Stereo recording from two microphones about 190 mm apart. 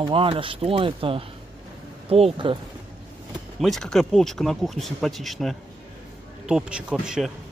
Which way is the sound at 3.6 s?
Centre (ahead or behind).